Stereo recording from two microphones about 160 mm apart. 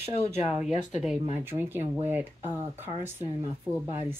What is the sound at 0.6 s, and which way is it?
Speech, 45° left (ahead or behind).